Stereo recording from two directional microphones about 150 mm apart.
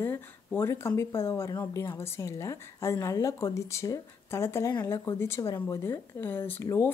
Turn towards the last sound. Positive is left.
turn(degrees=15)  # may be behind; listen again after turning